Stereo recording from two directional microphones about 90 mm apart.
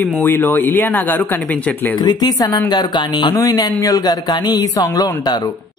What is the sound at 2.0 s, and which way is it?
Speech, 45° left (ahead or behind).